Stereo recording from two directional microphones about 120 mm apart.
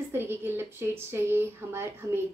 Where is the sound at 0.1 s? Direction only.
20° right (ahead or behind).